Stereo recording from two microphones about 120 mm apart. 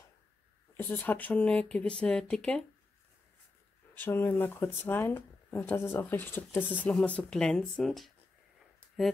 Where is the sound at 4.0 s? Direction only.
15° left (ahead or behind).